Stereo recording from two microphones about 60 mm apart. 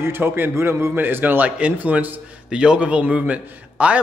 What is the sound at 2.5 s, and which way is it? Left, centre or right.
Speech, centre.